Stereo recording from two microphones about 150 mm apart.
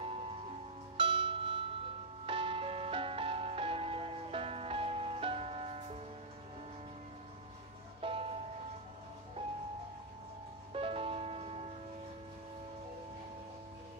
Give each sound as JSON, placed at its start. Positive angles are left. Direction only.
{"t": 0.9, "sound": "music", "side_deg": -35}
{"t": 8.0, "sound": "music", "side_deg": -35}
{"t": 10.7, "sound": "music", "side_deg": -40}